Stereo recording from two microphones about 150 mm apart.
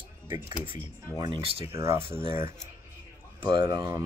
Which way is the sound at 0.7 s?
30° right (ahead or behind).